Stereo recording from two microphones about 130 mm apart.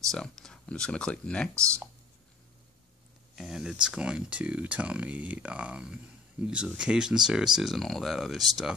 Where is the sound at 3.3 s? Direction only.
5° right (ahead or behind).